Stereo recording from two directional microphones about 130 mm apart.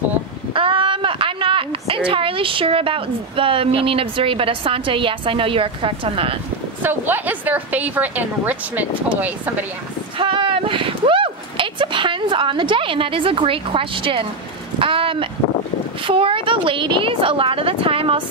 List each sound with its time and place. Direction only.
0.5 s a child's voice: 40° right (ahead or behind)
6.8 s a woman's voice: 15° right (ahead or behind)
10.1 s a sound: 40° right (ahead or behind)
14.8 s speech: 45° right (ahead or behind)